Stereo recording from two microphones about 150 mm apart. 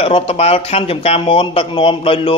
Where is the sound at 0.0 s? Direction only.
40° left (ahead or behind).